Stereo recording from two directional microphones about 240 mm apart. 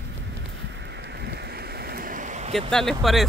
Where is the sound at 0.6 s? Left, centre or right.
Right.